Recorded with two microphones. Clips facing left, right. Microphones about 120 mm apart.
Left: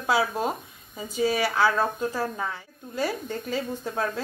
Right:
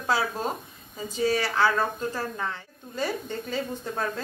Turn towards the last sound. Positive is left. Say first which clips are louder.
# left 1 dB
turn(degrees=5)  # may be behind; listen again after turning